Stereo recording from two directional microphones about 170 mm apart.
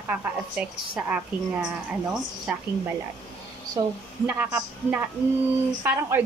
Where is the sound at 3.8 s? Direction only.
20° right (ahead or behind).